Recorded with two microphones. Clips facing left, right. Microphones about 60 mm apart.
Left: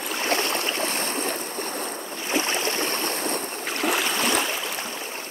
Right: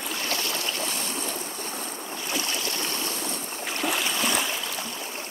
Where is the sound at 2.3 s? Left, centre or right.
Left.